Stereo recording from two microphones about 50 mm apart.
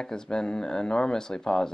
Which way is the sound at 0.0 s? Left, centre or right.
Centre.